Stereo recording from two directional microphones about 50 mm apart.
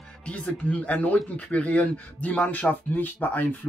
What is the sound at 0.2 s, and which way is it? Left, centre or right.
Speech, left.